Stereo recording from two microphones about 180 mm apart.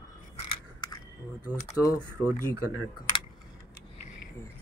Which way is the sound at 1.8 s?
20° left (ahead or behind).